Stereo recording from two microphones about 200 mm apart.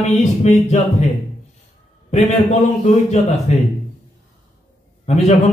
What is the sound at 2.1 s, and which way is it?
A man's voice, 35° left (ahead or behind).